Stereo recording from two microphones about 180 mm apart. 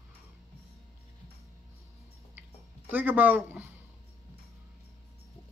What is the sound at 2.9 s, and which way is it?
Speech, 10° right (ahead or behind).